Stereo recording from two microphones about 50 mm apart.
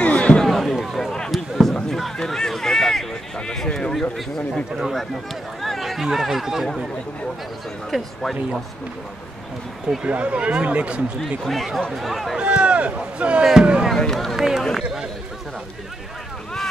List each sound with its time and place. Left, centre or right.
0.0 s a sound: left
0.4 s a sound: centre
2.1 s run: centre
3.3 s a sound: centre
5.6 s a sound: centre
6.0 s speech: centre
7.9 s speech: centre
10.0 s speech: right
11.4 s speech: centre
12.4 s speech: right
13.9 s speech: centre
14.3 s speech: centre